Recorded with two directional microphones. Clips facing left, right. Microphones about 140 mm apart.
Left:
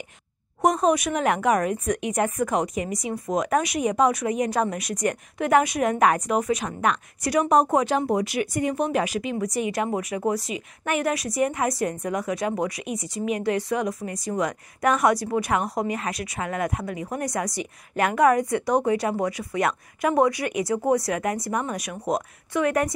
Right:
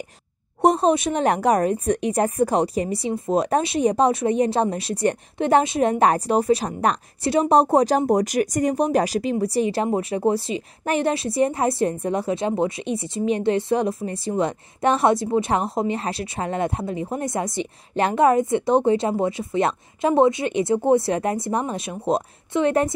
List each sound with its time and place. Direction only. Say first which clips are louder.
0.6 s speech: right 3 dB; 30° right (ahead or behind)